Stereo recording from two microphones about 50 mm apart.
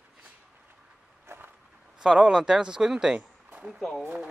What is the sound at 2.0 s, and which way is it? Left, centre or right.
Speech, centre.